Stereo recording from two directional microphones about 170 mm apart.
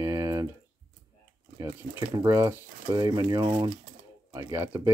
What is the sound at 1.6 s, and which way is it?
Speech, 20° right (ahead or behind).